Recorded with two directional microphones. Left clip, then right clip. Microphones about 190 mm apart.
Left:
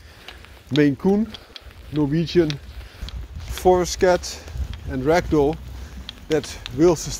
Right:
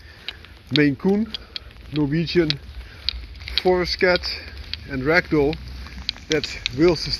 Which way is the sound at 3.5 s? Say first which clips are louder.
Left 2 dB; 20° left (ahead or behind).